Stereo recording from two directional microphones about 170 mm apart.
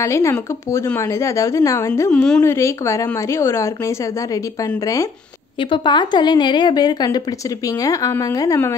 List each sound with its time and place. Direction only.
0.0 s a woman's voice: 15° left (ahead or behind)
1.9 s a woman's voice: 10° left (ahead or behind)
2.4 s a woman's voice: 15° left (ahead or behind)